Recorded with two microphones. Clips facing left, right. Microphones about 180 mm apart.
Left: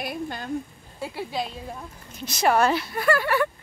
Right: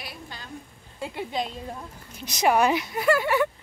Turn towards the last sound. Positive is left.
turn(degrees=-20)  # may be behind; listen again after turning